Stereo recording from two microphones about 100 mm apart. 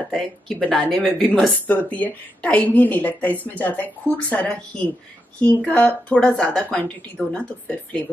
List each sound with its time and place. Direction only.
0.1 s speech: 5° left (ahead or behind)
1.9 s speech: 15° left (ahead or behind)